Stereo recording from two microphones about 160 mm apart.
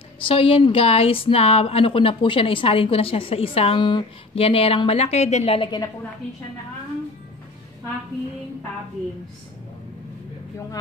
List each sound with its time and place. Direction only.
0.3 s a woman's voice: 35° left (ahead or behind)